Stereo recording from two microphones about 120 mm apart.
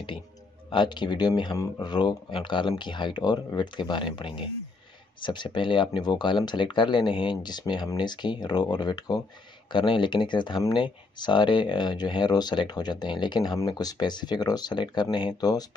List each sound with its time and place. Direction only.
0.7 s speech: 40° left (ahead or behind)